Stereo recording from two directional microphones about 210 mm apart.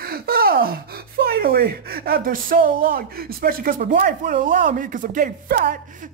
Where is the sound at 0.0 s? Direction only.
45° right (ahead or behind).